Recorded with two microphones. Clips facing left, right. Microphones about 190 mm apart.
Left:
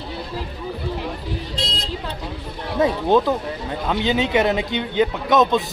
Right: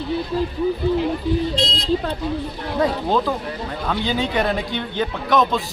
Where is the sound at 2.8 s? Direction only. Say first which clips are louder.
Left 3 dB; 20° left (ahead or behind).